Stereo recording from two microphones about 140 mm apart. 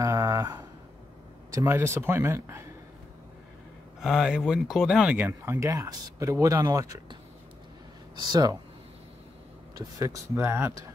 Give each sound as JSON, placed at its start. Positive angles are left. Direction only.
{"t": 0.0, "sound": "a sound", "side_deg": -20}
{"t": 1.5, "sound": "speech", "side_deg": -15}
{"t": 4.0, "sound": "speech", "side_deg": -5}
{"t": 8.3, "sound": "speech", "side_deg": -25}
{"t": 9.8, "sound": "speech", "side_deg": -20}